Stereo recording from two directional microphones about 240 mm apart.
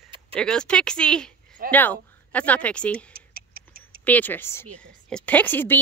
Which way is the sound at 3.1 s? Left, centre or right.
Right.